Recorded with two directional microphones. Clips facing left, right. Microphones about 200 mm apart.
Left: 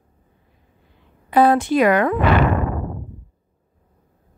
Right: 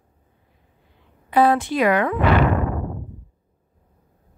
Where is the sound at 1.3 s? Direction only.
45° left (ahead or behind).